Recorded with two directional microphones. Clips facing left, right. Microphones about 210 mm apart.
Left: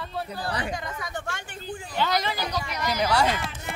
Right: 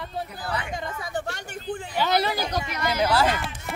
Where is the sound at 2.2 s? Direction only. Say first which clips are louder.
Right 3 dB; 45° right (ahead or behind).